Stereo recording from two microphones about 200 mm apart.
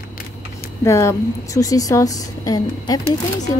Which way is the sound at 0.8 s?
15° left (ahead or behind).